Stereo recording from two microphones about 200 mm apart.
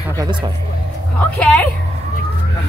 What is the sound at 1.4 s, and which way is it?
Speech, 5° left (ahead or behind).